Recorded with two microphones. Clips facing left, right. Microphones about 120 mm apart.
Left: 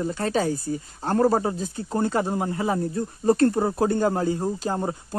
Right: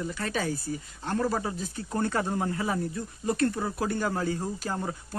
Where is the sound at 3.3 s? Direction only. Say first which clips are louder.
Left 8 dB; 35° left (ahead or behind).